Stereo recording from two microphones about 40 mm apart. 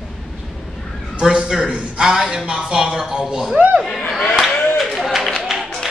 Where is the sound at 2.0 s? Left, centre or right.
Centre.